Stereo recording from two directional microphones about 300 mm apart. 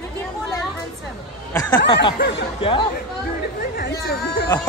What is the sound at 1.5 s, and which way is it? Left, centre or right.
Speech, centre.